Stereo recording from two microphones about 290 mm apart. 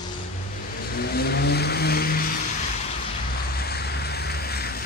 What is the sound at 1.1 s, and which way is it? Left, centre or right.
Vehicle, left.